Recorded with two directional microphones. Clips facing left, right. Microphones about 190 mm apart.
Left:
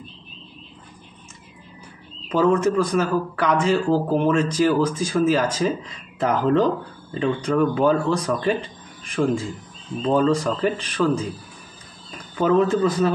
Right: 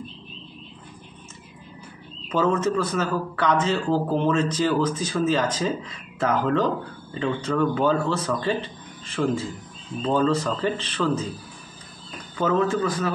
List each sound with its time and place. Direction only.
2.3 s speech: 15° left (ahead or behind)
12.4 s speech: 15° left (ahead or behind)